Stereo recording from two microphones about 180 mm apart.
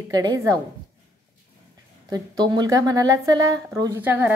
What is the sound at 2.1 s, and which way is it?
A woman's voice, 25° right (ahead or behind).